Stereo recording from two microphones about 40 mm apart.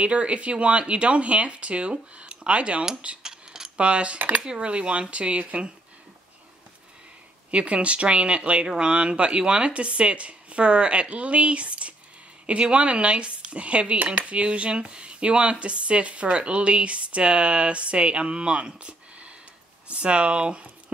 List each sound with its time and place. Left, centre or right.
0.0 s speech: right
3.2 s cutlery: centre
3.8 s speech: right
7.5 s speech: right